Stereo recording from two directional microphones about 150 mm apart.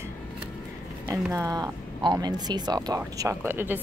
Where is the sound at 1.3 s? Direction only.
20° right (ahead or behind).